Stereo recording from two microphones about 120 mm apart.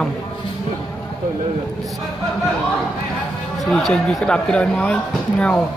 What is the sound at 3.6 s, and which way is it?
Speech, 5° left (ahead or behind).